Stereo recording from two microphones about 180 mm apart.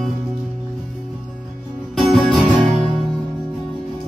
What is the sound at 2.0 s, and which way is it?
Music, 5° left (ahead or behind).